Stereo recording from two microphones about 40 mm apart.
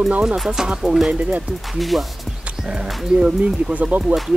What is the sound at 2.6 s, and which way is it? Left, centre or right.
Speech, centre.